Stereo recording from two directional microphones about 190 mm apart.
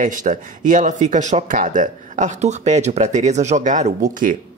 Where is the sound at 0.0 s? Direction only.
45° right (ahead or behind).